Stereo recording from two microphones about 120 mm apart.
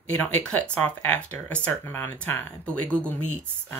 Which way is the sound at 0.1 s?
10° left (ahead or behind).